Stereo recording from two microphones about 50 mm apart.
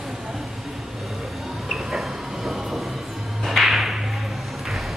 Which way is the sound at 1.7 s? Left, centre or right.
Centre.